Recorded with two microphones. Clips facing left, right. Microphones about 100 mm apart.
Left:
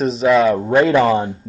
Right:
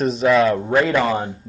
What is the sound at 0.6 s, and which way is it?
Speech, 20° left (ahead or behind).